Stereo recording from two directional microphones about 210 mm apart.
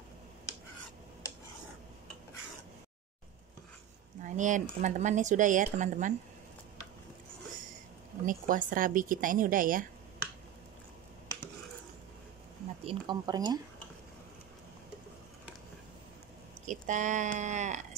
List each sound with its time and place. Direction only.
4.2 s speech: 35° right (ahead or behind)
8.3 s speech: 40° right (ahead or behind)
12.8 s speech: 20° right (ahead or behind)
16.6 s speech: 35° right (ahead or behind)